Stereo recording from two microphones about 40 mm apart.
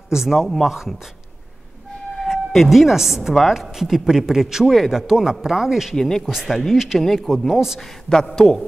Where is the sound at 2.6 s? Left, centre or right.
Centre.